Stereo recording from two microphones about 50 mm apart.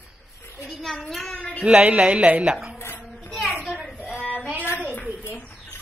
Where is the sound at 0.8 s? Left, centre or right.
Centre.